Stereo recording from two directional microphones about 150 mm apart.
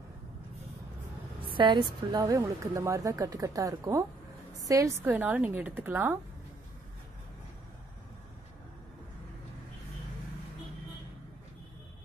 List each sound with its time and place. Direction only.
1.5 s a woman's voice: 30° right (ahead or behind); by 6.1 s 15° right (ahead or behind)